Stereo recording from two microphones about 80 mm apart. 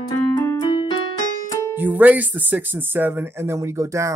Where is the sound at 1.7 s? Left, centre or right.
Right.